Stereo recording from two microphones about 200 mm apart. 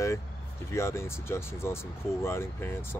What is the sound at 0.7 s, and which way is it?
Speech, 15° left (ahead or behind).